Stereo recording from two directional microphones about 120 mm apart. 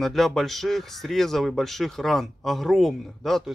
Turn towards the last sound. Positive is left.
turn(degrees=0)  # may be behind; listen again after turning